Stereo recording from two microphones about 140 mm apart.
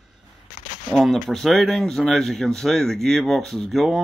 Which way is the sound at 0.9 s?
Centre (ahead or behind).